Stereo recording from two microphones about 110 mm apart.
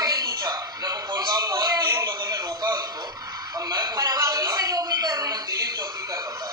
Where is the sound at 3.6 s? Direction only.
40° right (ahead or behind).